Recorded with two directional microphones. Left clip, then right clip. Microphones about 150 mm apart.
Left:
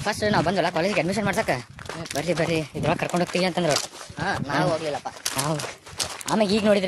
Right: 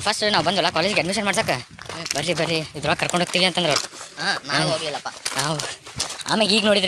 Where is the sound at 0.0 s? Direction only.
20° left (ahead or behind).